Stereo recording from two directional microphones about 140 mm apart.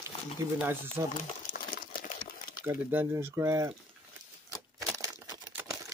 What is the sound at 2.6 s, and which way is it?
Speech, 15° right (ahead or behind).